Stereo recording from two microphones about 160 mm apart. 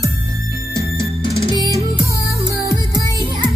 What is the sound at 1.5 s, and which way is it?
Music, 25° right (ahead or behind).